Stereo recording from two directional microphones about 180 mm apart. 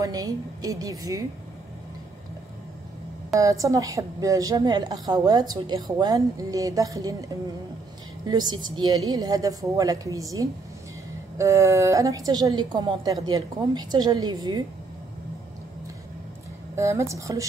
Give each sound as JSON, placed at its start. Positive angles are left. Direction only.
{"t": 0.0, "sound": "a woman's voice", "side_deg": -20}
{"t": 3.3, "sound": "a woman's voice", "side_deg": -20}
{"t": 8.3, "sound": "a woman's voice", "side_deg": -25}
{"t": 16.7, "sound": "speech", "side_deg": -15}